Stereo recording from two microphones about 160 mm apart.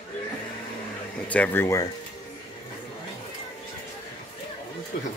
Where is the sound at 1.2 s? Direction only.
10° left (ahead or behind).